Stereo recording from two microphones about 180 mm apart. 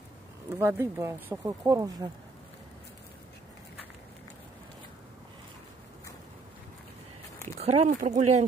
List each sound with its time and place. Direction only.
0.6 s speech: 15° right (ahead or behind)
7.6 s speech: 35° right (ahead or behind)